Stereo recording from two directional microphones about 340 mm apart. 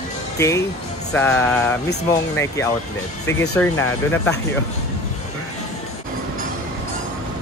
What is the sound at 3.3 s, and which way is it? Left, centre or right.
Speech, centre.